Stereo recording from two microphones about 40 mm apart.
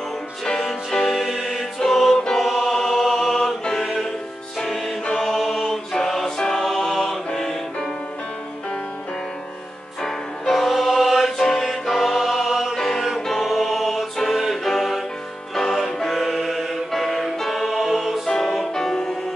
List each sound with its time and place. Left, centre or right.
0.5 s music: centre
1.2 s music: centre
2.4 s choir: centre
3.6 s music: centre
5.2 s music: centre
5.7 s mantra: centre
6.3 s music: centre
10.0 s music: centre
12.2 s choir: centre
12.9 s music: centre
18.4 s music: centre
18.7 s music: centre